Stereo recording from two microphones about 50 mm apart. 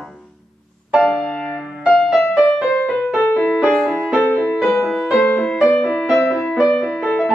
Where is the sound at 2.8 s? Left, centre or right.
Left.